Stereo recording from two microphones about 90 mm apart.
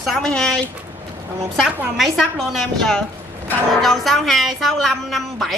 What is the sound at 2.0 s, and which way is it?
A woman's voice, centre (ahead or behind).